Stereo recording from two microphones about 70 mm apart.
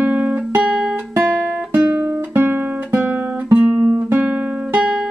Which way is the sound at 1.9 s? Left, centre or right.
Right.